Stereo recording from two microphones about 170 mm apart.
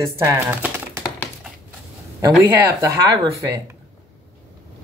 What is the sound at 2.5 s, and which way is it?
Speech, 20° right (ahead or behind).